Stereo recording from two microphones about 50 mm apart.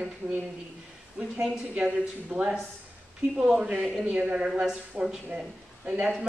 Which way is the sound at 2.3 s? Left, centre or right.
Centre.